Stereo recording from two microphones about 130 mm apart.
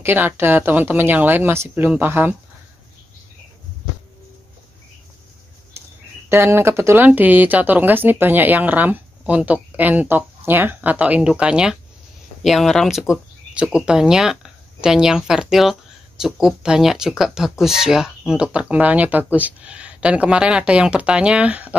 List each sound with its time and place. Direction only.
0.0 s speech: 15° right (ahead or behind)
6.2 s speech: 20° right (ahead or behind)